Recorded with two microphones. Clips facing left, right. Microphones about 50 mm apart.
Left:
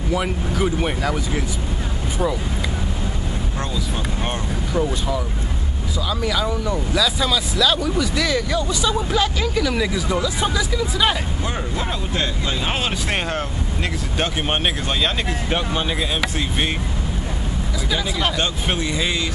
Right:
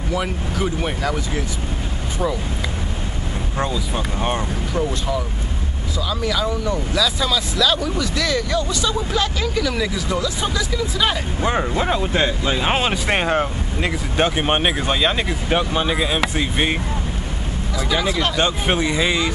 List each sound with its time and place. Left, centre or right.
0.1 s speech: centre
3.9 s speech: centre
4.7 s speech: centre
11.4 s speech: right
17.9 s speech: centre
18.7 s speech: centre